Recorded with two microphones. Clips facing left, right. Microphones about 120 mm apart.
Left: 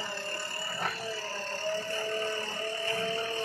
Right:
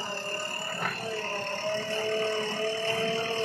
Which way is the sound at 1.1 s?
65° right (ahead or behind).